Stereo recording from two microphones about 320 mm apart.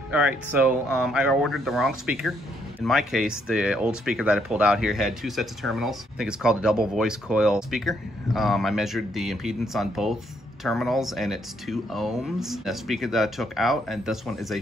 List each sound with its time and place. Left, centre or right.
0.1 s speech: centre